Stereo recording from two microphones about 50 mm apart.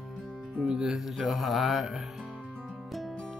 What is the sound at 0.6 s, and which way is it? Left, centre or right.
Music, centre.